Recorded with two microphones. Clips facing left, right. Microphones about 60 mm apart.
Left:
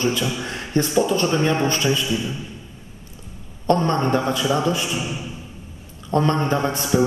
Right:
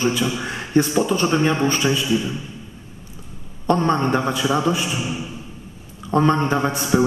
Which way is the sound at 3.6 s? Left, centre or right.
Centre.